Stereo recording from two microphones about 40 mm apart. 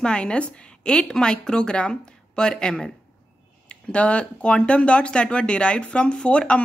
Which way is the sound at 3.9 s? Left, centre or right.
Left.